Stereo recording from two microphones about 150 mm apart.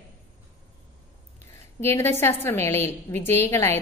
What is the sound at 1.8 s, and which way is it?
A woman's voice, 15° left (ahead or behind).